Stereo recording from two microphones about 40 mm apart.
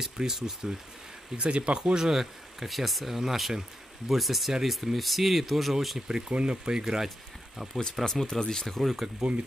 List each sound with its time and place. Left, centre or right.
0.0 s speech: centre
1.3 s speech: right; by 5.9 s centre
5.9 s speech: centre
8.0 s speech: centre
9.2 s speech: centre